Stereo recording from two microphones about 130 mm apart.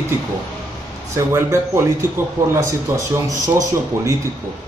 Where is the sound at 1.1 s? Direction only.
20° right (ahead or behind).